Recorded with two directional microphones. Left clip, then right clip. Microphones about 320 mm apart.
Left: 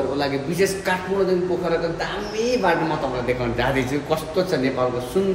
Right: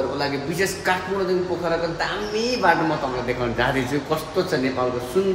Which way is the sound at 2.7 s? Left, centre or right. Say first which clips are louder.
Right 1 dB; centre.